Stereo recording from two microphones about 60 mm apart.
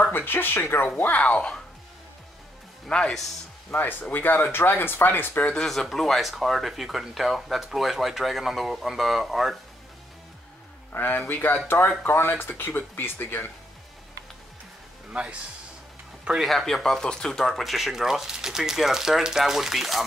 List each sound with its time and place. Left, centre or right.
0.1 s speech: left
2.9 s speech: centre
3.7 s speech: left
5.5 s speech: centre
10.9 s speech: left
15.0 s a man's voice: centre
16.4 s speech: centre